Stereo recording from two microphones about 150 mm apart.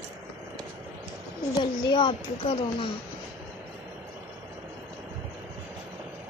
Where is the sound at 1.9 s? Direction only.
35° left (ahead or behind).